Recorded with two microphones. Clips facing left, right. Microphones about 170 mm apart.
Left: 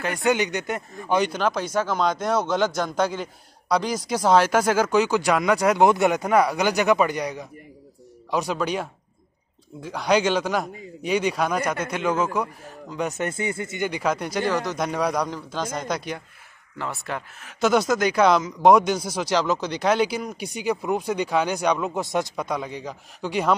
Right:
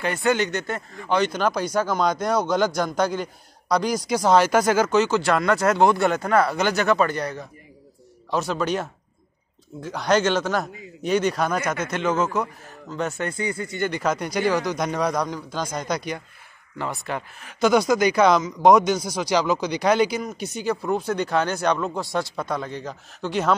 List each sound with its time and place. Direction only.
0.2 s a man's voice: 15° left (ahead or behind)
1.4 s a man's voice: centre (ahead or behind); by 13.8 s 25° left (ahead or behind)
13.8 s a man's voice: 10° left (ahead or behind)
21.9 s a man's voice: 20° left (ahead or behind)